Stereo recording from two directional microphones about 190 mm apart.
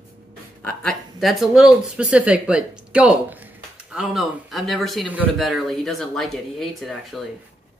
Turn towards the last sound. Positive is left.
turn(degrees=0)  # may be behind; listen again after turning